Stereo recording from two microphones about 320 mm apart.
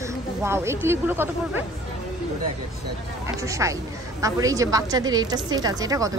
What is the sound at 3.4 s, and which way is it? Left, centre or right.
A woman's voice, centre.